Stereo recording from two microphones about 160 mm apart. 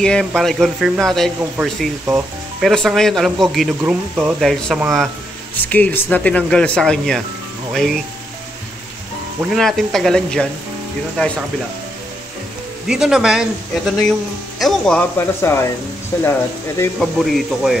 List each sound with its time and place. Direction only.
0.0 s speech: 5° left (ahead or behind)
2.6 s speech: centre (ahead or behind)
5.7 s speech: 10° left (ahead or behind)
9.5 s speech: centre (ahead or behind)
12.8 s speech: 5° right (ahead or behind)
15.1 s speech: 15° left (ahead or behind)
17.0 s speech: centre (ahead or behind)